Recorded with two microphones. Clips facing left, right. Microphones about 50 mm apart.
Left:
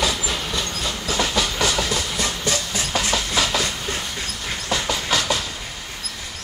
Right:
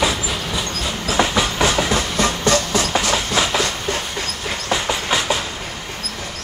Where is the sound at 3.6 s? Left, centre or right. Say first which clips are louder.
Right 4 dB; right.